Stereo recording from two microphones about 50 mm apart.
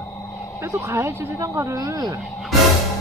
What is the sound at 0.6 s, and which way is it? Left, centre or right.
A woman's voice, right.